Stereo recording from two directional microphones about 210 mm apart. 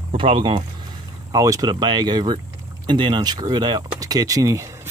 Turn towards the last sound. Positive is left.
turn(degrees=-15)  # may be behind; listen again after turning